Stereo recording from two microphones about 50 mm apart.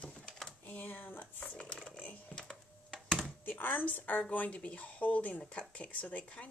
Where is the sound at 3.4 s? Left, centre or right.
Left.